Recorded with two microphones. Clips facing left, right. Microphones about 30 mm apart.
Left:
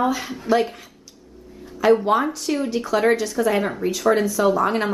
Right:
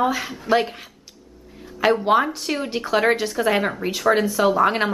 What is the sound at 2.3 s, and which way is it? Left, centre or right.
A woman's voice, right.